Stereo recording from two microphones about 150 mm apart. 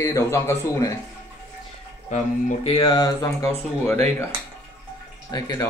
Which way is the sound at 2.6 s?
35° left (ahead or behind).